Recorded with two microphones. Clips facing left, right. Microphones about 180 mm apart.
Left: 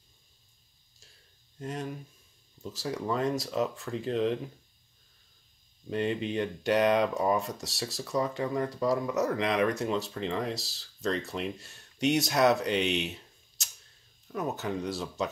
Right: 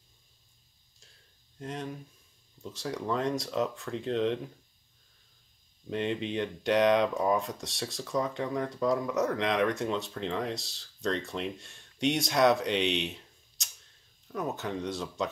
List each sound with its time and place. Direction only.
1.6 s speech: centre (ahead or behind)
5.9 s speech: centre (ahead or behind)